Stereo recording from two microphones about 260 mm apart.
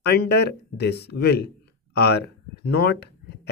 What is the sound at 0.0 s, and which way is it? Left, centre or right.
Speech, left.